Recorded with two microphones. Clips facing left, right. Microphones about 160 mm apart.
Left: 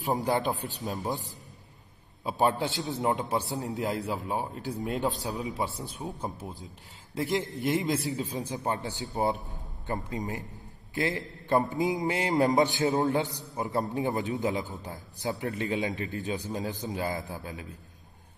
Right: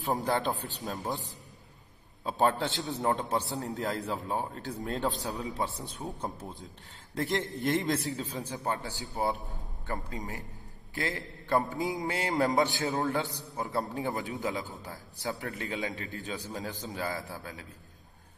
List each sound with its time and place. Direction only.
0.0 s a man's voice: 15° left (ahead or behind)
2.2 s a man's voice: 15° left (ahead or behind)
5.9 s a man's voice: centre (ahead or behind)
8.1 s a man's voice: 15° left (ahead or behind)